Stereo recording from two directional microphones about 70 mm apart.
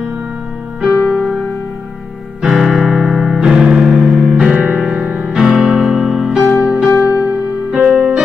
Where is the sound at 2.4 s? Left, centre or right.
Centre.